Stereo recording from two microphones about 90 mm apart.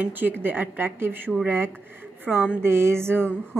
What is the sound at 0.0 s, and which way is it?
Speech, 20° right (ahead or behind).